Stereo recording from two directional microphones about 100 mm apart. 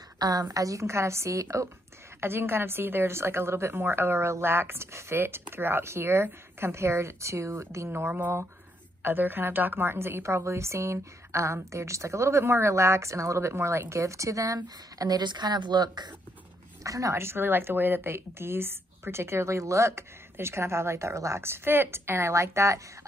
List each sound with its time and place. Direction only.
0.2 s a woman's voice: 40° right (ahead or behind)
16.8 s a woman's voice: 35° right (ahead or behind)